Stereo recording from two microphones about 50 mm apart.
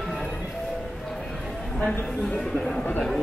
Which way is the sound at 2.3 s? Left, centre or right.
Centre.